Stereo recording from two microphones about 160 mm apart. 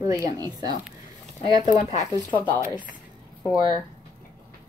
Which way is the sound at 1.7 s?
45° left (ahead or behind).